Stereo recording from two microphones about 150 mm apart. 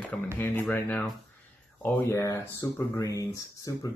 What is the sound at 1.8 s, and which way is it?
Speech, 15° left (ahead or behind).